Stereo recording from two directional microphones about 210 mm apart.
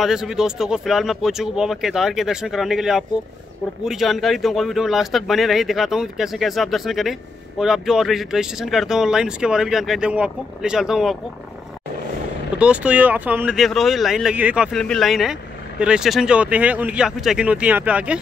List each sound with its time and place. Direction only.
0.0 s speech: centre (ahead or behind)
12.5 s speech: 5° right (ahead or behind)